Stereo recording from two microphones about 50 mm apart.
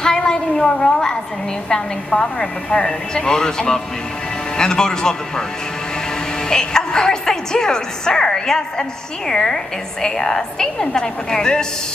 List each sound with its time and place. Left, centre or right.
0.0 s a sound: centre
1.7 s a woman's voice: centre
6.5 s a woman's voice: centre